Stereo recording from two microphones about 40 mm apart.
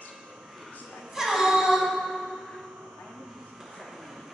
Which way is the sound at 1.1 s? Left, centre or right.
Centre.